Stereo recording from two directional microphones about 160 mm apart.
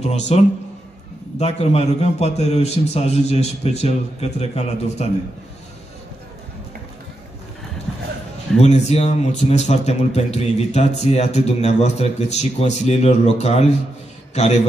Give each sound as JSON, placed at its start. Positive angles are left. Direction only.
{"t": 0.1, "sound": "speech", "side_deg": 45}
{"t": 1.4, "sound": "speech", "side_deg": 40}
{"t": 8.5, "sound": "a man's voice", "side_deg": 45}